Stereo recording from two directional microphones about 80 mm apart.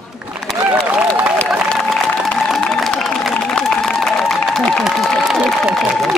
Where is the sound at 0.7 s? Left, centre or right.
Centre.